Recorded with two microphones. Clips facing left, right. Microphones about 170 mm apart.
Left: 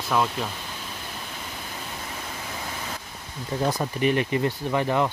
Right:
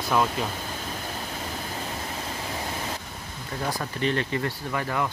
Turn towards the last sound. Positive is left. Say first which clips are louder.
# left 5 dB
turn(degrees=20)  # may be behind; listen again after turning